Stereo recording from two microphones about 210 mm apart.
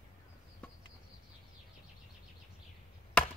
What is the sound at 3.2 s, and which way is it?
Chop, 5° left (ahead or behind).